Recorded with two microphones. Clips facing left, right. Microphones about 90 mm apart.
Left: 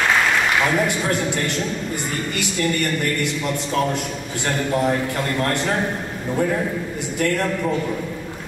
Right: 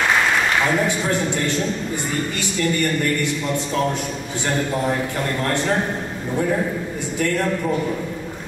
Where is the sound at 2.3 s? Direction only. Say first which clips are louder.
Left 2 dB; 70° left (ahead or behind).